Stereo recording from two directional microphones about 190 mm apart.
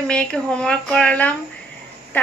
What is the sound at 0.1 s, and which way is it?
A woman's voice, 5° left (ahead or behind).